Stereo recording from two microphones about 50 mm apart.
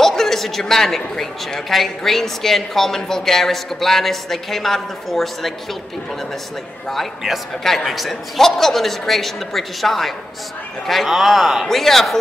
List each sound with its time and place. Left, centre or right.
0.0 s a woman's voice: centre
6.9 s a woman's voice: centre